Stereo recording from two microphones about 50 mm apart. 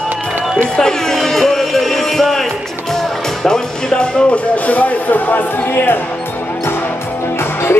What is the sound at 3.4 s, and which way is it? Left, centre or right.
Music, centre.